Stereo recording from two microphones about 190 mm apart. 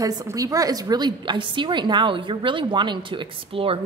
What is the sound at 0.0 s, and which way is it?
A woman's voice, 20° right (ahead or behind).